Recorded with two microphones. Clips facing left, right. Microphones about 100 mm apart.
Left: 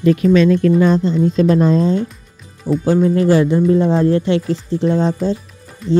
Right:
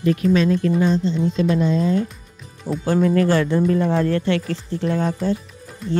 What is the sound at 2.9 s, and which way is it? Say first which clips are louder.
Speech: left 3 dB; 20° left (ahead or behind).